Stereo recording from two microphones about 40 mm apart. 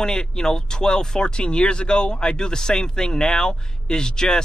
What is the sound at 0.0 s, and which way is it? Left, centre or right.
Speech, centre.